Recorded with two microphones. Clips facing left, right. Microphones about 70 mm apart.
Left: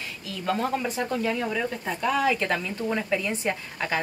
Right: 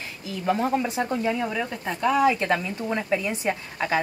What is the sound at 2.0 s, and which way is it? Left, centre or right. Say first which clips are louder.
Speech: right 4 dB; right.